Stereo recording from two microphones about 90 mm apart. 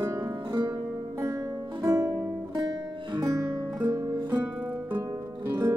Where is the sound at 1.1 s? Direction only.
35° right (ahead or behind).